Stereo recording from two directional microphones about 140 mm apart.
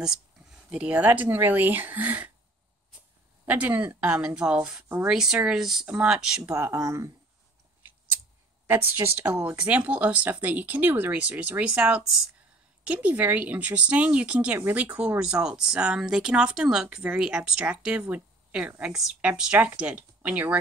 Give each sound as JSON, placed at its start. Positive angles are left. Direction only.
{"t": 0.7, "sound": "speech", "side_deg": -10}
{"t": 3.4, "sound": "speech", "side_deg": -10}
{"t": 6.5, "sound": "speech", "side_deg": -20}
{"t": 8.6, "sound": "speech", "side_deg": -15}